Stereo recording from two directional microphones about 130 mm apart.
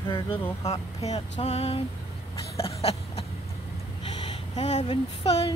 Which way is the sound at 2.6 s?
50° left (ahead or behind).